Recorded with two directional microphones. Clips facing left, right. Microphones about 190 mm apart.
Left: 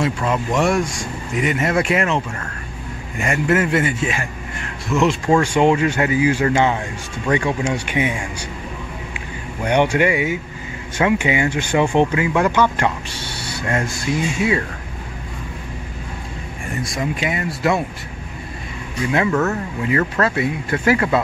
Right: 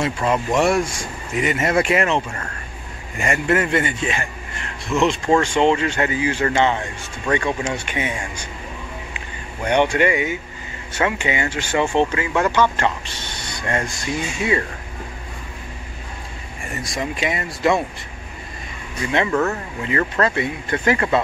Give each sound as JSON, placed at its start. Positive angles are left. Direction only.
{"t": 0.0, "sound": "speech", "side_deg": 0}
{"t": 9.6, "sound": "speech", "side_deg": 10}
{"t": 16.8, "sound": "speech", "side_deg": 0}
{"t": 19.1, "sound": "speech", "side_deg": 5}